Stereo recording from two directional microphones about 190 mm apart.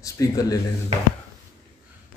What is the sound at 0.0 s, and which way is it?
Speech, 20° left (ahead or behind).